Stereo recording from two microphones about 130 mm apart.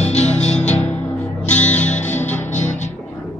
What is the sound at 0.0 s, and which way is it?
Music, 60° left (ahead or behind).